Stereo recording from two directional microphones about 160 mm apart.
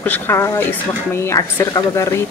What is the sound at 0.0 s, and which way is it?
Speech, 15° left (ahead or behind).